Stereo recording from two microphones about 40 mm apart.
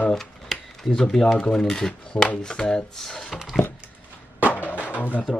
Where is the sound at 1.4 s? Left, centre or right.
Left.